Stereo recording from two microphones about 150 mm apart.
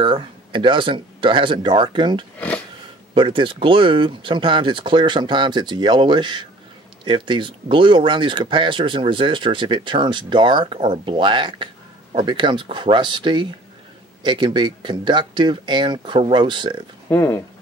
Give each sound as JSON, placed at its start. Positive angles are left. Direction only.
{"t": 0.0, "sound": "speech", "side_deg": -35}
{"t": 2.3, "sound": "a sound", "side_deg": 10}
{"t": 3.2, "sound": "speech", "side_deg": -35}
{"t": 17.1, "sound": "speech", "side_deg": 10}